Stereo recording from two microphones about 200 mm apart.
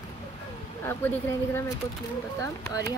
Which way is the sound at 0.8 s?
10° left (ahead or behind).